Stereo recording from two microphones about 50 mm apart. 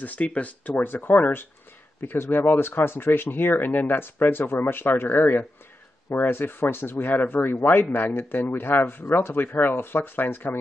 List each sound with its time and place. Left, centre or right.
0.0 s speech: left